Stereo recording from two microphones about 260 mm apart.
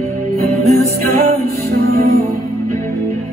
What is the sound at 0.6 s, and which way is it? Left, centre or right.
Music, right.